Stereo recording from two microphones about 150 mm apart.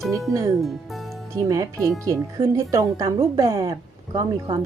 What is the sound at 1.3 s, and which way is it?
Speech, 20° right (ahead or behind).